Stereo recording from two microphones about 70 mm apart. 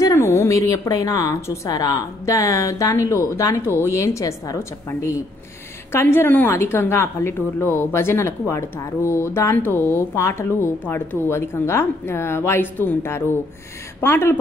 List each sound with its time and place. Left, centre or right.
0.0 s a woman's voice: left
2.9 s a woman's voice: left
5.9 s a woman's voice: left
9.6 s a woman's voice: left
10.1 s a woman's voice: left